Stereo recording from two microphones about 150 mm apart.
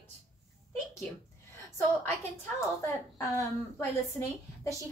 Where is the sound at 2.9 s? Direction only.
20° left (ahead or behind).